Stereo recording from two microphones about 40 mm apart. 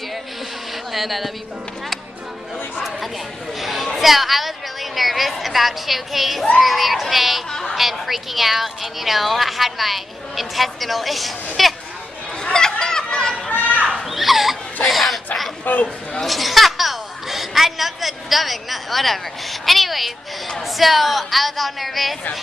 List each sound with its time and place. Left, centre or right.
0.9 s speech: centre
3.6 s speech: centre
12.5 s a sound: centre
13.5 s children playing: left
14.1 s a sound: centre
15.6 s a man's voice: left
16.2 s a woman's voice: centre